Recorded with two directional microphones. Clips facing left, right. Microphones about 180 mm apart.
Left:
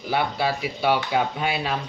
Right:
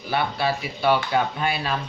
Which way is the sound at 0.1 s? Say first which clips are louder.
Even; 15° left (ahead or behind).